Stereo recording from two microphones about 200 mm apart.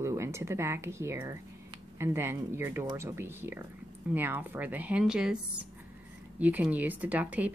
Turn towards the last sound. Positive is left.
turn(degrees=-10)  # may be behind; listen again after turning